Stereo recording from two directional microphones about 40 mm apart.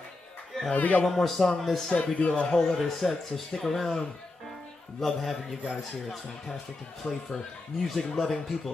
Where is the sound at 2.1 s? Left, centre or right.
Left.